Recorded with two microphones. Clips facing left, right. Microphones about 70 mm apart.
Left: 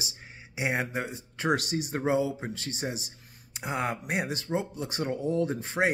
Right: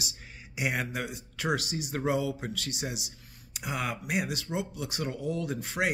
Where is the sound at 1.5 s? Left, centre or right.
Left.